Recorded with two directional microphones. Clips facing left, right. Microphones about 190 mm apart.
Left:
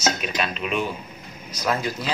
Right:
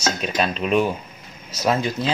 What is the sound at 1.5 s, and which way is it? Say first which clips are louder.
Speech: right 4 dB; 25° right (ahead or behind).